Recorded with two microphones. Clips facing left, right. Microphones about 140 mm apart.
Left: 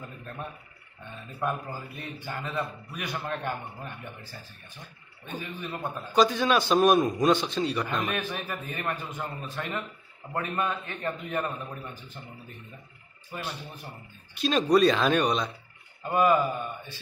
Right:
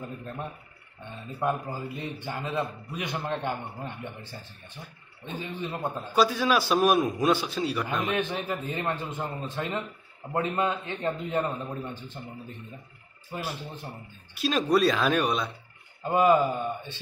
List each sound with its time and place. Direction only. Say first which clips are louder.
1.4 s a man's voice: right 3 dB; 20° right (ahead or behind)
6.1 s a man's voice: left 1 dB; 5° right (ahead or behind)
8.0 s a man's voice: right 3 dB; 20° right (ahead or behind)
13.3 s a man's voice: right 2 dB; 25° right (ahead or behind)
14.3 s a man's voice: left 2 dB; 5° right (ahead or behind)
16.0 s a man's voice: right 2 dB; 25° right (ahead or behind)